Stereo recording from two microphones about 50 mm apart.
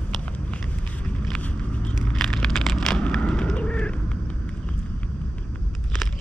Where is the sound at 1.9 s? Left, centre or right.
Centre.